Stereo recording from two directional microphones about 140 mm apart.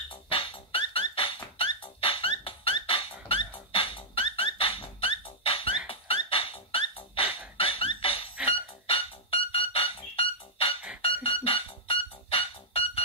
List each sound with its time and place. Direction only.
0.1 s music: 40° left (ahead or behind)
7.5 s beatboxing: 40° left (ahead or behind)
8.5 s music: 45° left (ahead or behind)